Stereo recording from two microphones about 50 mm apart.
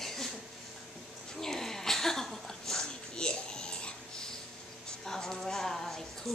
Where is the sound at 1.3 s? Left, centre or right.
Centre.